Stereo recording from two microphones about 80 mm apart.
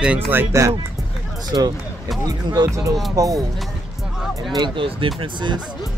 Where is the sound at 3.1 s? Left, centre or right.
Right.